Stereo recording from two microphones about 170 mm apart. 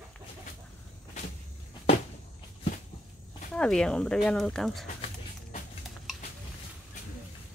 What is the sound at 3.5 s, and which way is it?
Speech, 5° left (ahead or behind).